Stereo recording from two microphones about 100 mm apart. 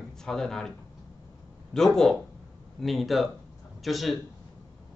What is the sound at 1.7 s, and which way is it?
Speech, 5° left (ahead or behind).